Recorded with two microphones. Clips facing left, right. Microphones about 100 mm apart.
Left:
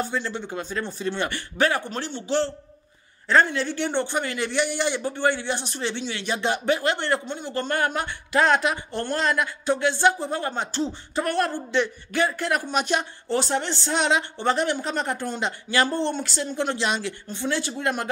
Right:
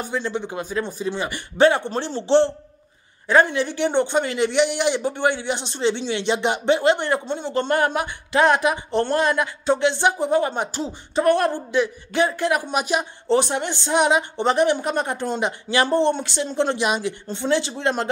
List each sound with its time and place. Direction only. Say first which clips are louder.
0.0 s speech: right 2 dB; 15° right (ahead or behind)
1.6 s a woman's voice: right 7 dB; 25° right (ahead or behind)